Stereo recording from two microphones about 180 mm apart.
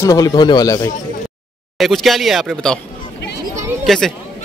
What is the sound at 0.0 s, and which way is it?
Speech, 20° left (ahead or behind).